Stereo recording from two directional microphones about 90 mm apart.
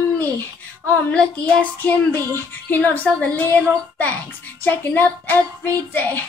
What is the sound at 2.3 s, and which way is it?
Speech, 20° left (ahead or behind).